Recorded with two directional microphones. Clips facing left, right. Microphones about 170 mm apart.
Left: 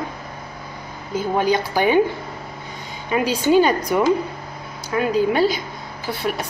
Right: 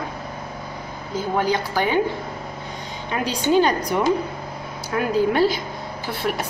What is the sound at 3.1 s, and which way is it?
Speech, 5° left (ahead or behind).